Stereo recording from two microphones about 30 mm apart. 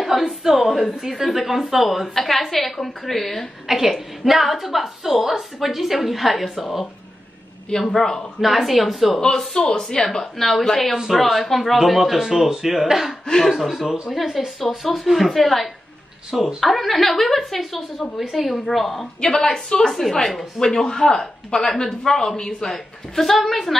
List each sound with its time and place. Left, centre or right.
0.0 s a sound: centre
0.7 s a woman's voice: centre
3.6 s a woman's voice: centre
7.9 s speech: centre
8.4 s a woman's voice: centre
9.6 s a woman's voice: left
10.0 s a woman's voice: centre
11.8 s a woman's voice: centre
19.2 s a woman's voice: centre
19.9 s speech: centre
22.7 s a woman's voice: centre